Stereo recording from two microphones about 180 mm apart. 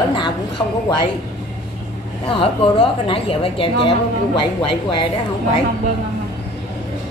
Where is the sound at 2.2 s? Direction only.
30° left (ahead or behind).